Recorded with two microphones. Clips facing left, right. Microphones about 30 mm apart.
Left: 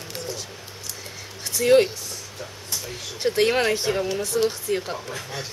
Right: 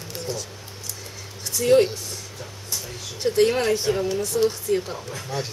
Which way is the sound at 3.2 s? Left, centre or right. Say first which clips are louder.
Right 1 dB; left.